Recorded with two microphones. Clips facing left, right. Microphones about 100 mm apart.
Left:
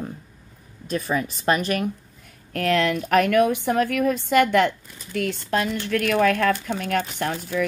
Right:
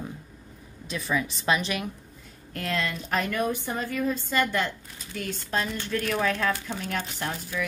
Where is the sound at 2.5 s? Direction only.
70° left (ahead or behind).